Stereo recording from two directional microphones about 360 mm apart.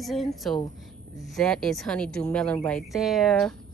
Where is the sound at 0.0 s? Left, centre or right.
Centre.